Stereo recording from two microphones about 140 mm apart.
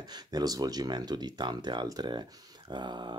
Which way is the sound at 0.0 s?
30° right (ahead or behind).